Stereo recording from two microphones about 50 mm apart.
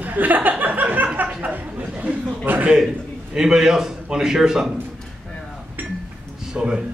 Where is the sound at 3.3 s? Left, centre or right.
Centre.